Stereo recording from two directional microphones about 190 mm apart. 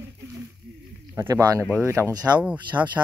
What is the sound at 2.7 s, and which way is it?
Speech, 10° right (ahead or behind).